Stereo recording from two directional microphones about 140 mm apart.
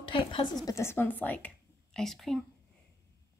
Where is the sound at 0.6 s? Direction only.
20° left (ahead or behind); by 2.4 s centre (ahead or behind).